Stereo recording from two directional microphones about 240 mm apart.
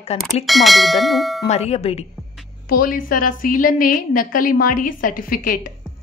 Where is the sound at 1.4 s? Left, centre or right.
Left.